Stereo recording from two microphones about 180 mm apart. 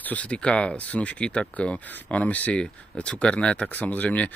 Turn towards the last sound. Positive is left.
turn(degrees=10)  # may be behind; listen again after turning